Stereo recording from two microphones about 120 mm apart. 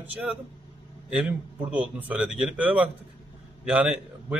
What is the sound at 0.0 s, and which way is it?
A man's voice, 15° right (ahead or behind).